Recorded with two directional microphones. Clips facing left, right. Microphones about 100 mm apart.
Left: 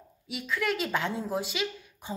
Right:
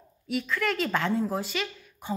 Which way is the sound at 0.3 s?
15° left (ahead or behind).